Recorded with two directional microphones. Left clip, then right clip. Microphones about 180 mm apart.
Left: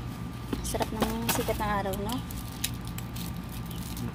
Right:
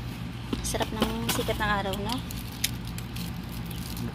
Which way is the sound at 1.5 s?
5° left (ahead or behind).